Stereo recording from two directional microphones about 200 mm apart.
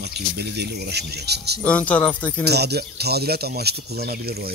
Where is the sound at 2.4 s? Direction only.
55° right (ahead or behind).